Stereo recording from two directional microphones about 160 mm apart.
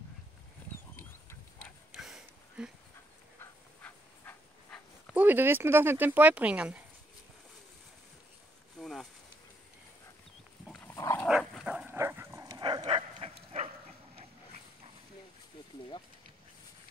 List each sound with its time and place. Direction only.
1.6 s a sound: centre (ahead or behind)
3.3 s dog: 10° left (ahead or behind)
5.1 s speech: 10° right (ahead or behind)
8.7 s a sound: 5° left (ahead or behind)
10.8 s dog: 15° left (ahead or behind)
11.2 s dog: 5° right (ahead or behind); by 12.8 s 25° right (ahead or behind)
12.8 s dog: 40° right (ahead or behind)